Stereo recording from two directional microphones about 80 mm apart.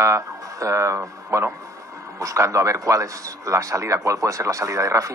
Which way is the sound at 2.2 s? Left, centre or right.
Right.